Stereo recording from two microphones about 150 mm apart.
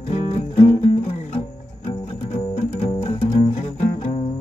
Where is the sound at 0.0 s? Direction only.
45° left (ahead or behind).